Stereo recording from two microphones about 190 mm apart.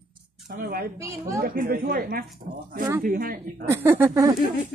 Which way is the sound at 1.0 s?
15° right (ahead or behind).